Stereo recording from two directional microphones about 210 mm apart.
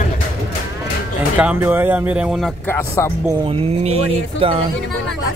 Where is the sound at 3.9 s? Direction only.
30° right (ahead or behind).